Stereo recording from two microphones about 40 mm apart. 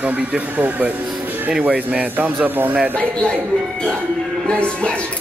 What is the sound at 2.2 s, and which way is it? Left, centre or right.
Speech, right.